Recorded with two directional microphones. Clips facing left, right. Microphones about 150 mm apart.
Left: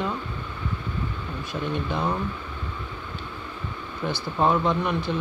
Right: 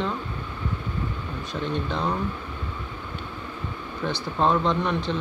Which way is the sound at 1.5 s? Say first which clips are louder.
Even; 5° left (ahead or behind).